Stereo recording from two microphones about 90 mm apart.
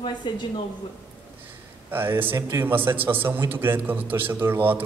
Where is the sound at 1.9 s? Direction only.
25° right (ahead or behind).